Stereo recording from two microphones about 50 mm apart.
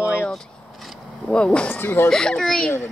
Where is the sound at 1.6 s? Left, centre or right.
Left.